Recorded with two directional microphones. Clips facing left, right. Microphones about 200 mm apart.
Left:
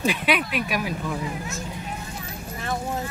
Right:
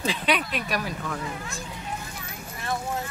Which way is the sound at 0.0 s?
10° left (ahead or behind).